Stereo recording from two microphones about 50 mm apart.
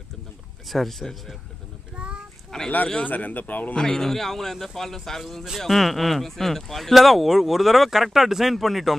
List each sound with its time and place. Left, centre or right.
0.7 s speech: centre
2.0 s child singing: right
2.5 s speech: centre
3.0 s speech: left
3.7 s speech: centre